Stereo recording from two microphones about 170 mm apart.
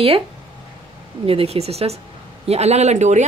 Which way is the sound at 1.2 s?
35° right (ahead or behind).